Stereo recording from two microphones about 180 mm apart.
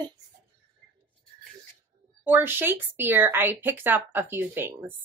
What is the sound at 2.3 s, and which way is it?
A woman's voice, 10° right (ahead or behind).